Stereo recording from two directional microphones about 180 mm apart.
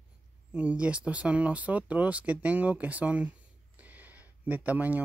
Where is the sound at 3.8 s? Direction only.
10° right (ahead or behind).